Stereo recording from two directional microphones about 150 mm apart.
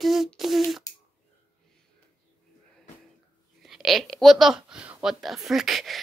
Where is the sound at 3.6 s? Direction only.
Centre (ahead or behind).